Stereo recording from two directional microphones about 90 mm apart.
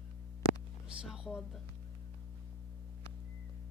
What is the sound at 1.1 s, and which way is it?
Speech, 5° right (ahead or behind).